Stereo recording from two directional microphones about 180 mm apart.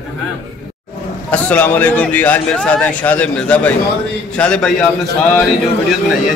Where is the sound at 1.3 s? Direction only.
10° left (ahead or behind).